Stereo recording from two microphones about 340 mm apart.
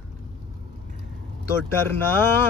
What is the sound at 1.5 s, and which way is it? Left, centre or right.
Speech, centre.